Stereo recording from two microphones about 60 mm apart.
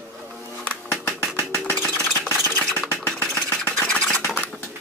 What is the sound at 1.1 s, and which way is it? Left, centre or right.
Engine, left.